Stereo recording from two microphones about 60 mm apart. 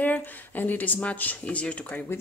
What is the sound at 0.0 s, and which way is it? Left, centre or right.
Speech, left.